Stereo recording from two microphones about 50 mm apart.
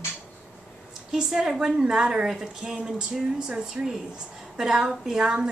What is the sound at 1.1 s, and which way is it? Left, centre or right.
A woman's voice, centre.